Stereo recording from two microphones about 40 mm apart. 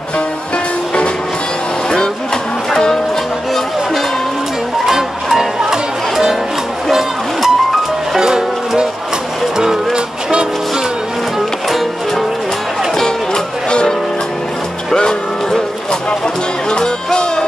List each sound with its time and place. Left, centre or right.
2.7 s music: centre
4.8 s music: centre
12.9 s music: centre
16.7 s music: centre